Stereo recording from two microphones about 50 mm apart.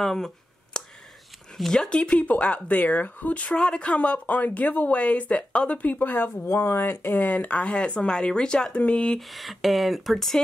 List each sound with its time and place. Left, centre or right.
0.0 s speech: centre
0.7 s a sound: centre
1.7 s speech: centre
3.5 s speech: left
6.3 s speech: left
6.6 s speech: left
7.3 s speech: left
9.3 s speech: centre